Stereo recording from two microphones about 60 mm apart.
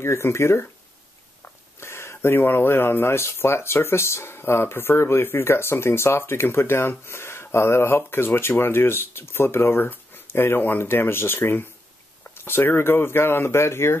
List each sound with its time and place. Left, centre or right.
0.0 s speech: left